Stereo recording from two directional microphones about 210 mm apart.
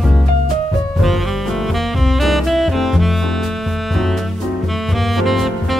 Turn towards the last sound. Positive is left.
turn(degrees=0)  # may be behind; listen again after turning